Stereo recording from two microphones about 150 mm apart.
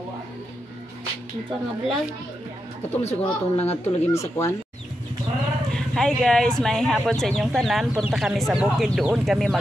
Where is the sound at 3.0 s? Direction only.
45° left (ahead or behind).